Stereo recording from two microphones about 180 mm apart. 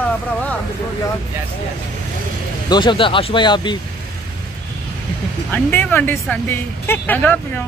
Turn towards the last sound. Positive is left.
turn(degrees=10)  # may be behind; listen again after turning